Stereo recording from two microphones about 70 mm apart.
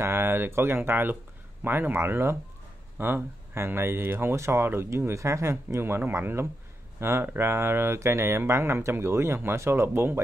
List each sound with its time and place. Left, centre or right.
0.0 s speech: right